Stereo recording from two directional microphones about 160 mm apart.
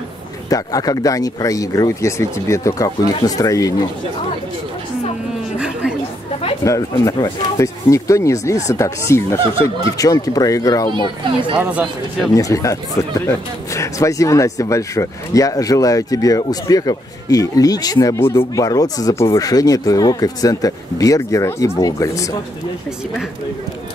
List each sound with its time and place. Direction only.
0.5 s speech: 20° left (ahead or behind)
5.6 s a sound: 5° right (ahead or behind)
6.6 s speech: 20° left (ahead or behind)
11.5 s speech: 10° right (ahead or behind)
12.4 s speech: 20° left (ahead or behind)